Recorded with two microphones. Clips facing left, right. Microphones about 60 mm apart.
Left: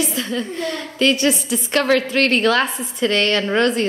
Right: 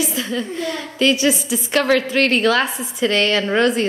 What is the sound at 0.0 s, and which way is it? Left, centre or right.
A woman's voice, centre.